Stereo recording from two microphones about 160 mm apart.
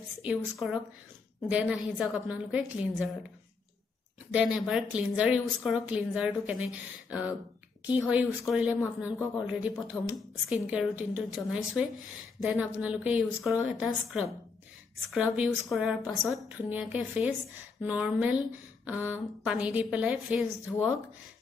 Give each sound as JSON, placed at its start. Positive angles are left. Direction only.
{"t": 0.2, "sound": "a woman's voice", "side_deg": -10}
{"t": 4.3, "sound": "a woman's voice", "side_deg": -10}
{"t": 15.1, "sound": "a woman's voice", "side_deg": -5}
{"t": 16.4, "sound": "a woman's voice", "side_deg": -10}
{"t": 20.6, "sound": "speech", "side_deg": 15}